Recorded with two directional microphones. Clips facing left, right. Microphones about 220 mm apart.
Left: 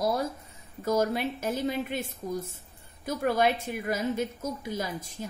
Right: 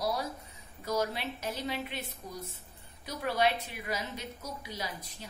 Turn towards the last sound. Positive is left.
turn(degrees=50)  # may be behind; listen again after turning